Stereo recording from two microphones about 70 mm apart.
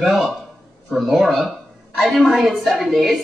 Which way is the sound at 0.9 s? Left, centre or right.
Centre.